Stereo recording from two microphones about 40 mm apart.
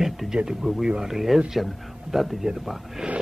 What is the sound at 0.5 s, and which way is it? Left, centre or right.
A man's voice, centre.